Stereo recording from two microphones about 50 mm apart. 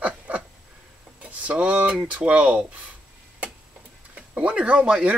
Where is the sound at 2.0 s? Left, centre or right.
Right.